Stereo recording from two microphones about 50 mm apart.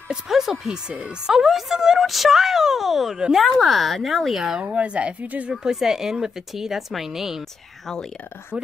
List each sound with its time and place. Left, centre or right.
0.1 s a woman's voice: centre
4.6 s speech: right
5.5 s a woman's voice: centre
7.8 s speech: centre